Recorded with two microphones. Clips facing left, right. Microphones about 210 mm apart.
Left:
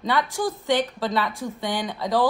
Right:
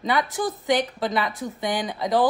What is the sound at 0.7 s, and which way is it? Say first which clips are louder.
A woman's voice: right 1 dB; 15° right (ahead or behind).